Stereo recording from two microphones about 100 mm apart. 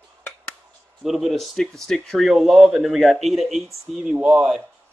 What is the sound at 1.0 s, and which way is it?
Speech, centre (ahead or behind).